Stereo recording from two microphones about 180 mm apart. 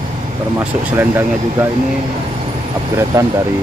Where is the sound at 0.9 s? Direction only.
15° right (ahead or behind).